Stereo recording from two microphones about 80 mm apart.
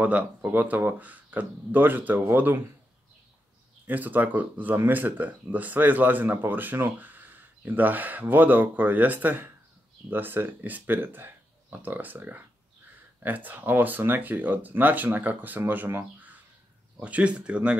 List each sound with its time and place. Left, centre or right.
0.0 s speech: centre
3.8 s speech: right